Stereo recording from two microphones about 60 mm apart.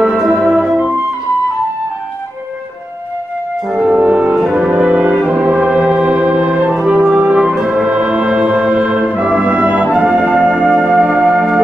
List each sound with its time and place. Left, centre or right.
0.0 s music: centre
0.7 s music: right
3.7 s music: centre
4.6 s brass instrument: centre
6.9 s music: centre
7.5 s music: centre
7.8 s brass instrument: right
9.9 s music: centre